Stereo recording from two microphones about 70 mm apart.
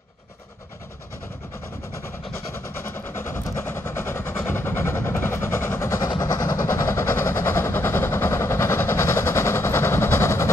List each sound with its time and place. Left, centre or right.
3.2 s train: left
3.5 s vehicle: left
6.0 s vehicle: left
6.7 s vehicle: left